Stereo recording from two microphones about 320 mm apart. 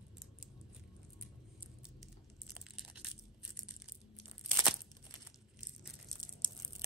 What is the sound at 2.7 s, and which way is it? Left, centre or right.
Crushing, centre.